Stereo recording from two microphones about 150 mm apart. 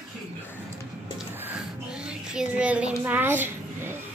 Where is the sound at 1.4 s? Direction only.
10° right (ahead or behind).